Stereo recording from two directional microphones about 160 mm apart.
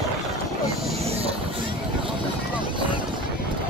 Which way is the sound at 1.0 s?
40° right (ahead or behind).